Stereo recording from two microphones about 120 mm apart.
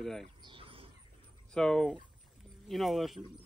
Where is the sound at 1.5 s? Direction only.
5° left (ahead or behind).